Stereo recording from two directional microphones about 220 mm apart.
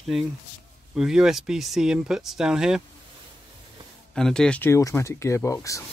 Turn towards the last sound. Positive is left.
turn(degrees=15)  # may be behind; listen again after turning